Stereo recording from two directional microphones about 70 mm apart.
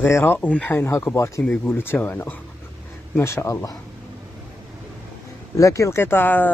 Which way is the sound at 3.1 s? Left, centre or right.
Left.